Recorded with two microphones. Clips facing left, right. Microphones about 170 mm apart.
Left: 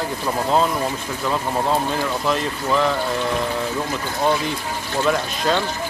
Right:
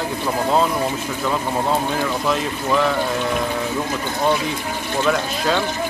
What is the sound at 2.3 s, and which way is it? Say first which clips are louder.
Speech: even; centre (ahead or behind).